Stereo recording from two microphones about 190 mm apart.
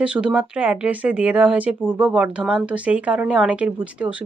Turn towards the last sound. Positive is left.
turn(degrees=-5)  # may be behind; listen again after turning